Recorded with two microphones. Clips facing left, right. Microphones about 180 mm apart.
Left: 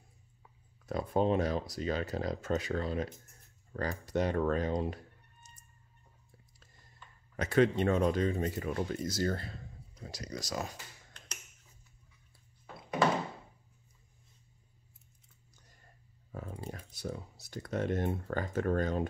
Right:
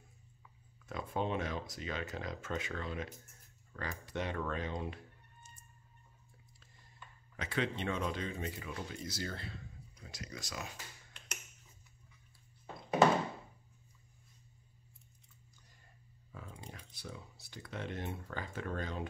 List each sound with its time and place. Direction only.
0.4 s speech: 40° left (ahead or behind)
7.3 s speech: 45° left (ahead or behind)
13.0 s door: 25° right (ahead or behind)
16.3 s speech: 45° left (ahead or behind)